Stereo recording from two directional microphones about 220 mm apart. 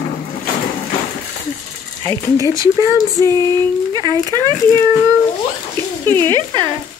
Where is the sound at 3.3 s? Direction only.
10° left (ahead or behind).